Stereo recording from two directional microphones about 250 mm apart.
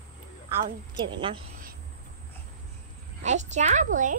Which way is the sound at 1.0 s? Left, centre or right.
Centre.